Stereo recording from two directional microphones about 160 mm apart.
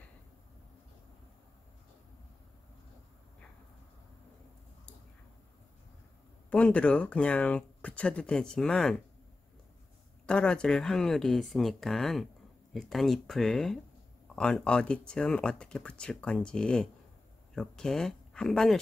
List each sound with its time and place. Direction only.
6.5 s speech: 5° left (ahead or behind)
10.2 s speech: 5° left (ahead or behind)